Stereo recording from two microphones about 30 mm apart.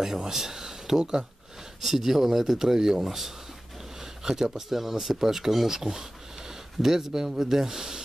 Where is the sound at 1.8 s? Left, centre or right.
Centre.